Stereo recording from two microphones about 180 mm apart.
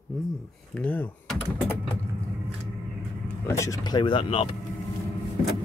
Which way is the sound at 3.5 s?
15° left (ahead or behind).